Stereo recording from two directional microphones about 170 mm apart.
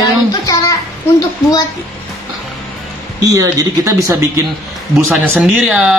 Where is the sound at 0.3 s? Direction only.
20° left (ahead or behind).